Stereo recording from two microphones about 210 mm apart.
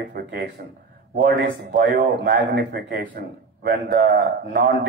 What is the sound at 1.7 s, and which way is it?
A man's voice, 50° right (ahead or behind).